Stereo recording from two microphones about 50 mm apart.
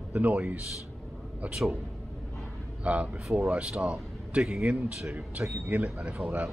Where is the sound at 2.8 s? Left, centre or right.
Right.